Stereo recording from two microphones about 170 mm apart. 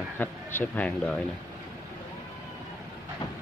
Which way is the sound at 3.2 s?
30° left (ahead or behind).